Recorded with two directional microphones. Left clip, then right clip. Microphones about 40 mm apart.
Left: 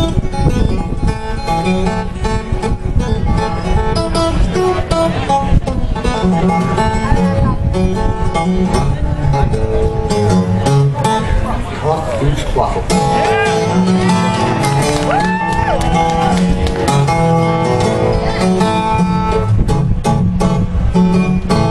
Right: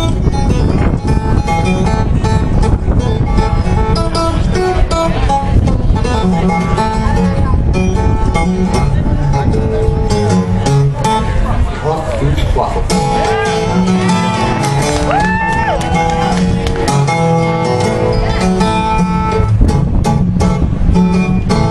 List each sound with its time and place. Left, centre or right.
4.2 s music: left
10.1 s music: left
12.5 s music: left
14.6 s music: left
16.8 s music: left